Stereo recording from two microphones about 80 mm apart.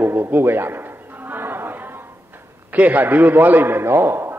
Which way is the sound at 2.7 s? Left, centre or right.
Right.